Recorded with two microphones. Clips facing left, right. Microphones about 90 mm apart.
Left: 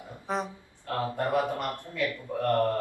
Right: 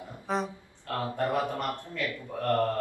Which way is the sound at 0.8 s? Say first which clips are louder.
Even; 15° left (ahead or behind).